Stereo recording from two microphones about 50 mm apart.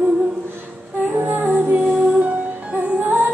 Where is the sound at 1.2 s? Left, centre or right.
Right.